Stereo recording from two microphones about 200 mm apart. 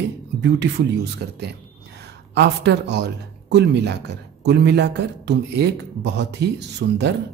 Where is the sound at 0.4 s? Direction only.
60° right (ahead or behind).